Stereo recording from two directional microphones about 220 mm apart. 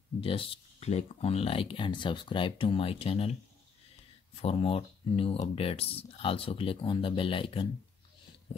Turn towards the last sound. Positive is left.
turn(degrees=25)  # may be behind; listen again after turning